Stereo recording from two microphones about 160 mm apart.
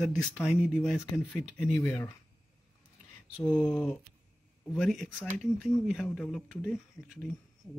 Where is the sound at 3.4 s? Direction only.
15° left (ahead or behind).